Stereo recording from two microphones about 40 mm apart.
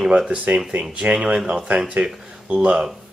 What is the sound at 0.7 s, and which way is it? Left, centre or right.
Speech, right.